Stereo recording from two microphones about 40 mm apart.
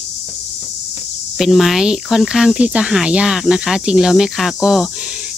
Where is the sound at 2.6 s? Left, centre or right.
Right.